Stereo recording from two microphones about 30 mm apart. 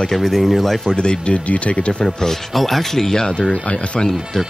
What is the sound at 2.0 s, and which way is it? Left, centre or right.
Speech, centre.